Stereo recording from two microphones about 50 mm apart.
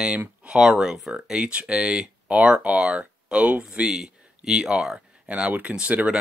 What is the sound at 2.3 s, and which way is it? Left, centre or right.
Speech, right.